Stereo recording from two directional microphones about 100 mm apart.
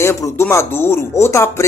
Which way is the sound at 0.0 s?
25° left (ahead or behind).